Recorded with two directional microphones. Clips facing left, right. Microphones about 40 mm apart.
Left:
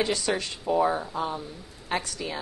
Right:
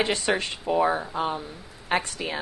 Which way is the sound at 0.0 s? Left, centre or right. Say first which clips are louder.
Right 2 dB; right.